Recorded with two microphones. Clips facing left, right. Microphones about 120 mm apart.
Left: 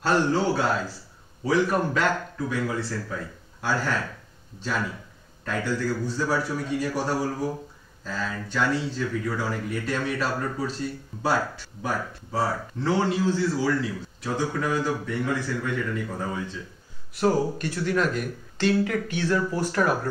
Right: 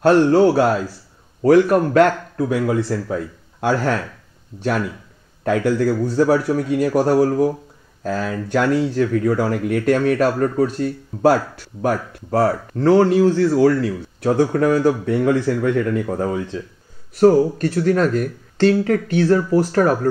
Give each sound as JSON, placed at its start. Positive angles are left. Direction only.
{"t": 0.0, "sound": "speech", "side_deg": -65}
{"t": 5.4, "sound": "speech", "side_deg": -85}
{"t": 17.1, "sound": "speech", "side_deg": -40}